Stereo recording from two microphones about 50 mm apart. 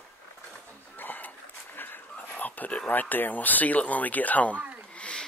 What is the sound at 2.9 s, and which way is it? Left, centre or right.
Speech, left.